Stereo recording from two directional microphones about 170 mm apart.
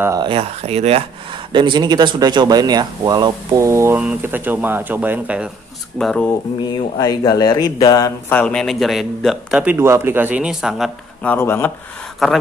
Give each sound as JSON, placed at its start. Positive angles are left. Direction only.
{"t": 0.0, "sound": "speech", "side_deg": -20}
{"t": 0.3, "sound": "speech", "side_deg": -40}
{"t": 1.5, "sound": "speech", "side_deg": -25}
{"t": 5.9, "sound": "a man's voice", "side_deg": 5}
{"t": 6.6, "sound": "speech", "side_deg": 25}
{"t": 8.3, "sound": "a man's voice", "side_deg": 10}
{"t": 11.2, "sound": "speech", "side_deg": 15}